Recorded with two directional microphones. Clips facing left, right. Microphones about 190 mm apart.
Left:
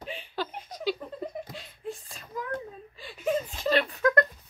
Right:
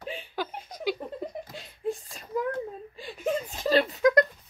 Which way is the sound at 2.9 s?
45° right (ahead or behind).